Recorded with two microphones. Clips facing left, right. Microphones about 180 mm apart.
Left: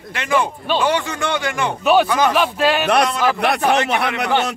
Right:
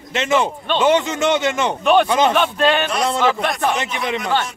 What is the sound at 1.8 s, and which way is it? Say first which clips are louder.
Speech: even; 5° left (ahead or behind).